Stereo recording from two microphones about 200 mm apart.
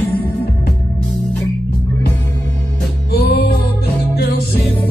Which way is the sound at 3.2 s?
50° left (ahead or behind).